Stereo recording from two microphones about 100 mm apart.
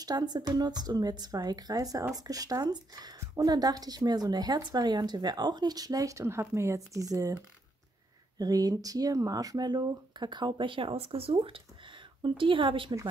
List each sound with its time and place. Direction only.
0.0 s speech: 40° right (ahead or behind)
8.4 s speech: 40° right (ahead or behind); by 12.9 s 55° right (ahead or behind)